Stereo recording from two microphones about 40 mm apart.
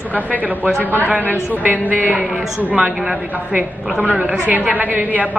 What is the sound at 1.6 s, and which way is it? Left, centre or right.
Speech, right.